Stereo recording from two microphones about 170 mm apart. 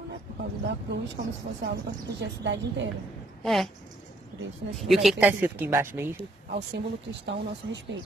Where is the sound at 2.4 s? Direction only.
90° right.